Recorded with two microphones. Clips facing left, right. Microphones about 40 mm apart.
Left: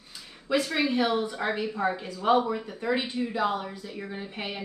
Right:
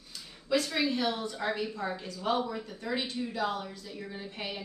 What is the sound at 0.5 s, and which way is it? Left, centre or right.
Speech, left.